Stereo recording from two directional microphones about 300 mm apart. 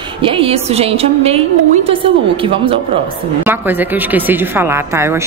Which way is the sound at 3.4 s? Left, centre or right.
Centre.